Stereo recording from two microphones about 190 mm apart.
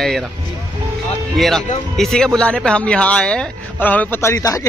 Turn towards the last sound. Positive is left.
turn(degrees=15)  # may be behind; listen again after turning